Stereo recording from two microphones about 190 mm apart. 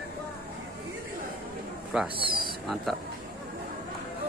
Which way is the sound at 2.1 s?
25° right (ahead or behind).